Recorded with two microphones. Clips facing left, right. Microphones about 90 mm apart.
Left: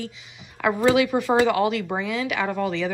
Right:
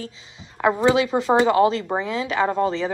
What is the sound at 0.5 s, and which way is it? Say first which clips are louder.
A woman's voice: right 1 dB; 25° right (ahead or behind).